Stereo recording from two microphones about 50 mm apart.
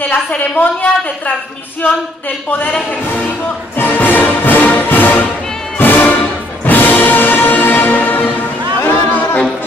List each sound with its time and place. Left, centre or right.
0.1 s a woman's voice: left
3.7 s music: left